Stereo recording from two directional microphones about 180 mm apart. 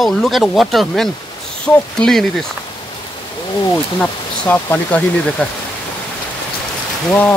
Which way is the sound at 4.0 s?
10° left (ahead or behind).